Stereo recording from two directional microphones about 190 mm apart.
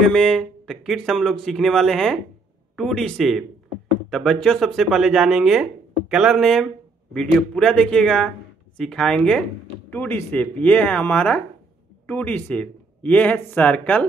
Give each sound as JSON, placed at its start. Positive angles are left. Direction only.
{"t": 0.0, "sound": "speech", "side_deg": 5}